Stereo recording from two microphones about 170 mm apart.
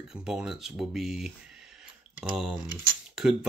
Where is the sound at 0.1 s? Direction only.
5° right (ahead or behind).